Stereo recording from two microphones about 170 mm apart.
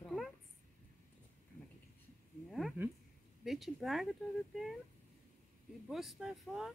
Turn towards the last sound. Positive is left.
turn(degrees=0)  # may be behind; listen again after turning